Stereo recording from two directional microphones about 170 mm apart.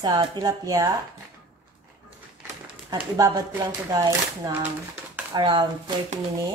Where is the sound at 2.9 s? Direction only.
20° right (ahead or behind).